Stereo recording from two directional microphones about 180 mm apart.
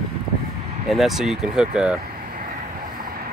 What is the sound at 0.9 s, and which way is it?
Speech, centre (ahead or behind).